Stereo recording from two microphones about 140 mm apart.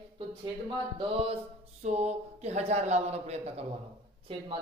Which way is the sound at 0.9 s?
40° right (ahead or behind).